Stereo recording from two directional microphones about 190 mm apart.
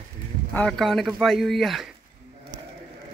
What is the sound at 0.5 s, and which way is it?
Speech, 5° left (ahead or behind).